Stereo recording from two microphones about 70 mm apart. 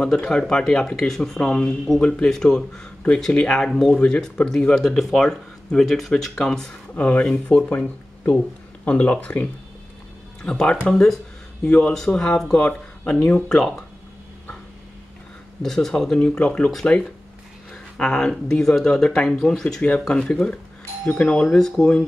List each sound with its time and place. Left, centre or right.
0.0 s speech: centre
7.0 s speech: centre
8.8 s speech: centre
15.6 s speech: centre